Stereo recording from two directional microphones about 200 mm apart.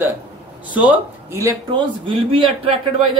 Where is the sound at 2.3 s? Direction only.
30° right (ahead or behind).